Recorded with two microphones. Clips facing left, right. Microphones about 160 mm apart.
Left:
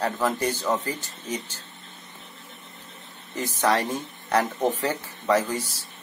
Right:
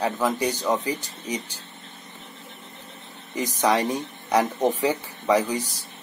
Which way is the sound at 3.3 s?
15° right (ahead or behind).